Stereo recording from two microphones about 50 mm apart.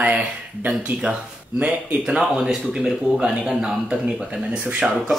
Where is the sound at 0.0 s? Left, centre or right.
Right.